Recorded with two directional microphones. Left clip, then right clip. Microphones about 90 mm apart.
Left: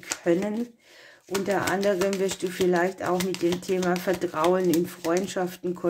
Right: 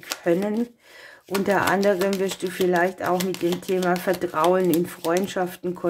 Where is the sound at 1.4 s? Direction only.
25° right (ahead or behind); by 3.2 s 10° right (ahead or behind).